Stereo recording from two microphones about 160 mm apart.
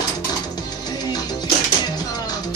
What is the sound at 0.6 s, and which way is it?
Music, 25° left (ahead or behind).